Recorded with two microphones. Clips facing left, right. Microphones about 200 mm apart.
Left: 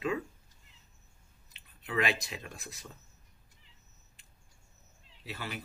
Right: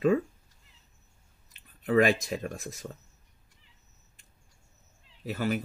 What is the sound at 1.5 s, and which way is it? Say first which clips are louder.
Speech: right 11 dB; 45° right (ahead or behind).